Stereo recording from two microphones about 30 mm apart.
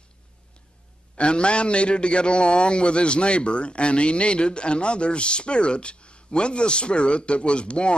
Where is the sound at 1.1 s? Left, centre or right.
Left.